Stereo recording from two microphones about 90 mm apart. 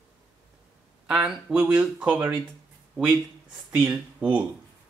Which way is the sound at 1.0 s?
15° right (ahead or behind).